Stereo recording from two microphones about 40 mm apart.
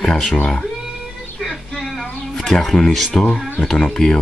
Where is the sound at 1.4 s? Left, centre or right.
Centre.